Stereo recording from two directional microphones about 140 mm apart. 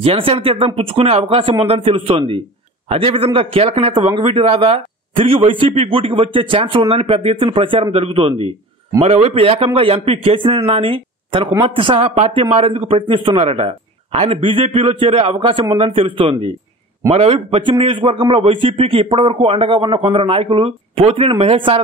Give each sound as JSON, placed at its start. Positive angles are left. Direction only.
{"t": 0.0, "sound": "a man's voice", "side_deg": -40}